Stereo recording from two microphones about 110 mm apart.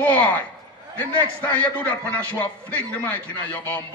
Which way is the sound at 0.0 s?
15° left (ahead or behind).